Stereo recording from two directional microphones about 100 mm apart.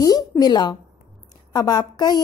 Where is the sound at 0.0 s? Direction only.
40° left (ahead or behind).